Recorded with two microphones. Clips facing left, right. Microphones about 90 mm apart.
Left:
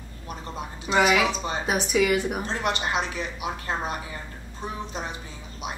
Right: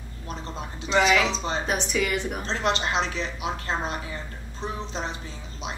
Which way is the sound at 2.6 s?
30° right (ahead or behind).